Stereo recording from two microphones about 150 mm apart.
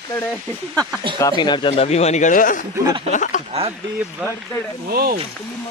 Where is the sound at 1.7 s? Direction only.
45° left (ahead or behind).